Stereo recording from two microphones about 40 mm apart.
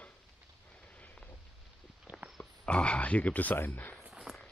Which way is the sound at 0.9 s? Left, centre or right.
Left.